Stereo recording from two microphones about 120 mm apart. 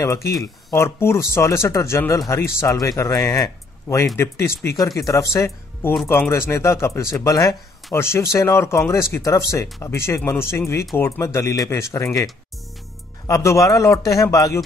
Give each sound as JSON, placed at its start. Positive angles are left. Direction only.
{"t": 0.0, "sound": "speech", "side_deg": 25}
{"t": 13.3, "sound": "speech", "side_deg": 25}